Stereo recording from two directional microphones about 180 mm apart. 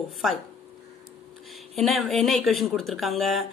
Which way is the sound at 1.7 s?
Centre (ahead or behind).